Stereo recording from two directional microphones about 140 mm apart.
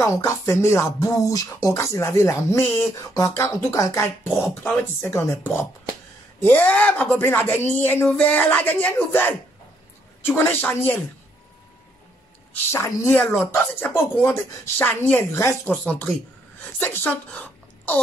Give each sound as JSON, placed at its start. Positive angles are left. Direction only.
{"t": 0.0, "sound": "speech", "side_deg": 20}
{"t": 12.5, "sound": "speech", "side_deg": 20}